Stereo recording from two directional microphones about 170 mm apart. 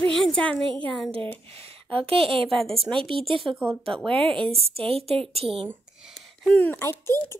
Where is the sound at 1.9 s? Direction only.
35° right (ahead or behind).